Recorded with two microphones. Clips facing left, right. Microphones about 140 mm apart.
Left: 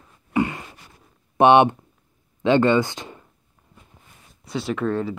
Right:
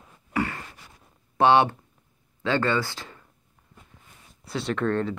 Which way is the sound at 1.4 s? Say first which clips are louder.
Left 5 dB; 20° left (ahead or behind).